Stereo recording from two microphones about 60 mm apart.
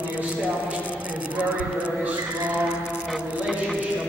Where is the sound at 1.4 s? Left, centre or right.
Right.